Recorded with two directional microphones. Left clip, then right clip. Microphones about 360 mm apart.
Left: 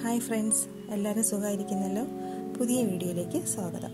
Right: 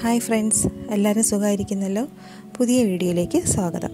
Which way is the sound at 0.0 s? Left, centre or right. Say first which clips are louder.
Right 9 dB; right.